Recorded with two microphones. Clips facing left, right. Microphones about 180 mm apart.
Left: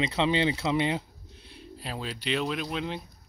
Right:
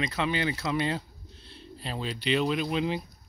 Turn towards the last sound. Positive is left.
turn(degrees=0)  # may be behind; listen again after turning